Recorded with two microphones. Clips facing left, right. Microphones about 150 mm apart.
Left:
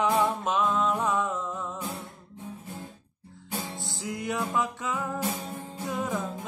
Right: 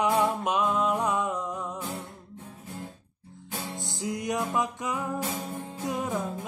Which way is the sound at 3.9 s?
20° right (ahead or behind).